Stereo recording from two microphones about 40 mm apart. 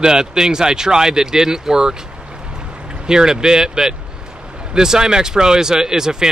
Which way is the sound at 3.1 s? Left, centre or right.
Centre.